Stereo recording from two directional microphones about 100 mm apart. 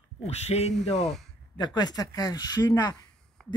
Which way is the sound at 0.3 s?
90° left.